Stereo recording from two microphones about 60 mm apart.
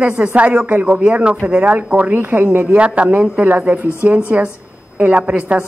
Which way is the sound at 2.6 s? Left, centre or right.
Centre.